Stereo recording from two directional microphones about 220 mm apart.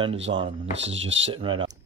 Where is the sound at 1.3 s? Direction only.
25° right (ahead or behind).